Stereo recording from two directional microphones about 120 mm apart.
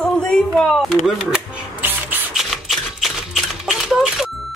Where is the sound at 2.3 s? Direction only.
Centre (ahead or behind).